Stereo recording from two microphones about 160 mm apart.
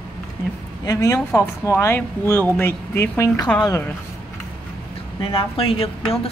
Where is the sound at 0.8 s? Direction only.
20° left (ahead or behind).